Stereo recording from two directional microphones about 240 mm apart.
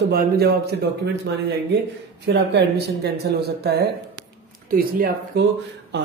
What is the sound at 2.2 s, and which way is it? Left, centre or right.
Speech, right.